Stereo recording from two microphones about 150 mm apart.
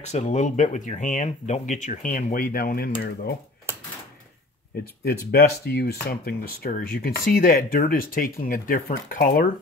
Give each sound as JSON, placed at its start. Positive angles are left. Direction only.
{"t": 0.0, "sound": "speech", "side_deg": 50}
{"t": 5.0, "sound": "speech", "side_deg": 90}